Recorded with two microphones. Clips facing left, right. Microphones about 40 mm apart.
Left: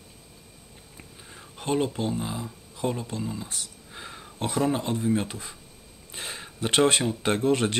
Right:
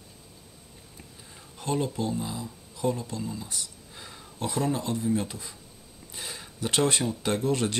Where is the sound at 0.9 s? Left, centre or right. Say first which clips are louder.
Left 3 dB; left.